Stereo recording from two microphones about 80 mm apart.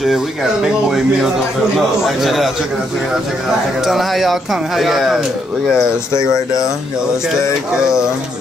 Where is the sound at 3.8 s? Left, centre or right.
Centre.